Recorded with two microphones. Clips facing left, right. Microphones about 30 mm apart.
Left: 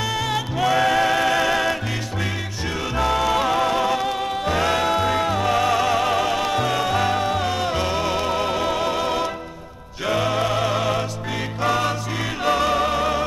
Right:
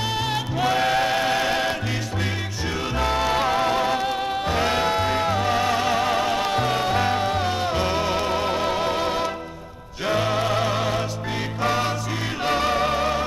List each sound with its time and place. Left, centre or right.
0.3 s music: right
3.1 s music: right
3.6 s music: centre
5.2 s music: centre
5.5 s music: right
7.8 s music: centre
8.2 s music: centre
8.5 s music: centre
12.4 s music: right